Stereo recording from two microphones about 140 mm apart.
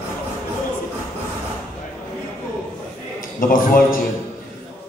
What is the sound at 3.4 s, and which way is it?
Speech, 80° left.